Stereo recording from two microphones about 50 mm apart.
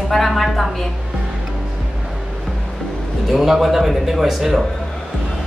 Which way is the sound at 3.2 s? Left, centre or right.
Centre.